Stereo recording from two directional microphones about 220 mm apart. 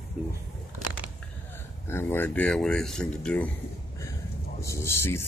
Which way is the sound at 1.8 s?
10° left (ahead or behind).